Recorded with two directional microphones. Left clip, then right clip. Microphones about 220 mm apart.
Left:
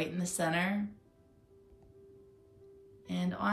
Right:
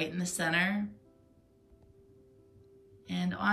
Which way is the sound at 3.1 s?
5° left (ahead or behind).